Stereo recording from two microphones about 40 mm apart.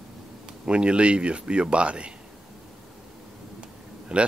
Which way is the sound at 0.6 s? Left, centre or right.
Right.